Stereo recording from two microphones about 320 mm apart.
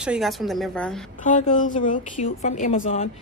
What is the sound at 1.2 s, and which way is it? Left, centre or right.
A woman's voice, left.